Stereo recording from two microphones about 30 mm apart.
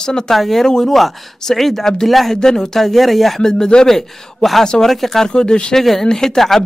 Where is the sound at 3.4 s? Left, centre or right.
Left.